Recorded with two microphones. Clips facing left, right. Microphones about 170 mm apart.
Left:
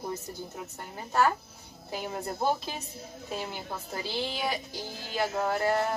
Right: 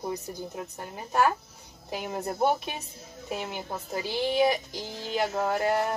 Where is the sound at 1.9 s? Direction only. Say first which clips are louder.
Right 2 dB; 15° right (ahead or behind).